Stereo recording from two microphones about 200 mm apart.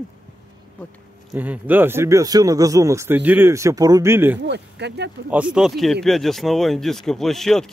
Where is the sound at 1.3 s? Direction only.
10° right (ahead or behind).